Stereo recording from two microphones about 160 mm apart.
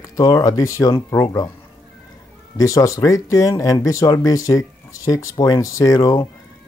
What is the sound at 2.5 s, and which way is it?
Speech, 20° left (ahead or behind).